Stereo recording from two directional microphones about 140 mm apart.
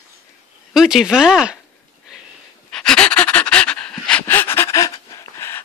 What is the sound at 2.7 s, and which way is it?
Pant, 5° left (ahead or behind).